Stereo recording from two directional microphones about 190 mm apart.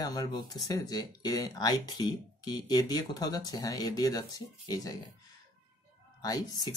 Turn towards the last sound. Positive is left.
turn(degrees=20)  # may be behind; listen again after turning